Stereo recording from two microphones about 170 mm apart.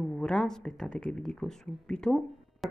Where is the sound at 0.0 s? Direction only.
5° left (ahead or behind).